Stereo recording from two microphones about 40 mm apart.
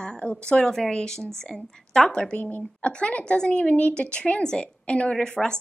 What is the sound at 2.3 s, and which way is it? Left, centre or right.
A woman's voice, left.